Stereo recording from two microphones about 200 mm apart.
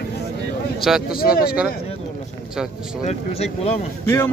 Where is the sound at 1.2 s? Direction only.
5° right (ahead or behind).